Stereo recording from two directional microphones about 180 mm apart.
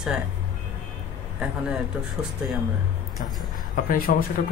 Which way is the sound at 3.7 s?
50° left (ahead or behind).